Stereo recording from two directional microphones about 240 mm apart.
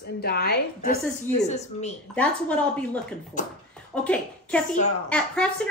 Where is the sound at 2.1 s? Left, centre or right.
Centre.